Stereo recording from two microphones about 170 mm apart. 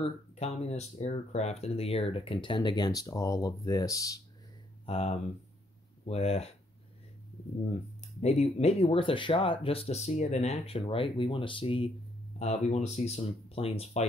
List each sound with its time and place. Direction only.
0.0 s speech: 40° left (ahead or behind); by 4.2 s 20° left (ahead or behind)
4.8 s speech: 35° left (ahead or behind)
7.7 s speech: 40° left (ahead or behind)